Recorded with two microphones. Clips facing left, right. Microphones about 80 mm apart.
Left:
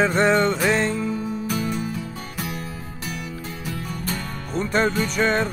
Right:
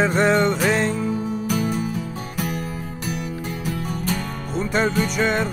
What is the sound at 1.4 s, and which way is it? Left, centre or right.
Music, right.